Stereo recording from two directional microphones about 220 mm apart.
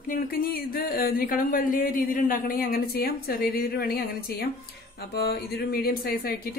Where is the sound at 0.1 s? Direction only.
40° left (ahead or behind).